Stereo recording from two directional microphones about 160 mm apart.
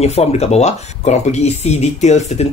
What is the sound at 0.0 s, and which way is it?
Speech, 40° left (ahead or behind).